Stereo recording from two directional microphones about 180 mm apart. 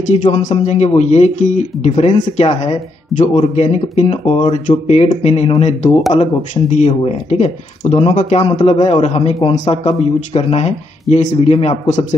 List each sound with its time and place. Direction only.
0.1 s speech: 40° left (ahead or behind)